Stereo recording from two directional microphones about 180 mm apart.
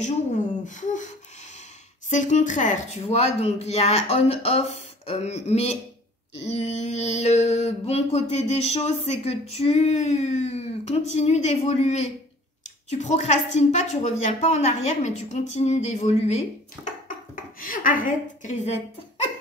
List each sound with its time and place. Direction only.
0.0 s a woman's voice: 45° left (ahead or behind)
2.0 s a sound: 40° left (ahead or behind)
17.6 s a woman's voice: 50° left (ahead or behind)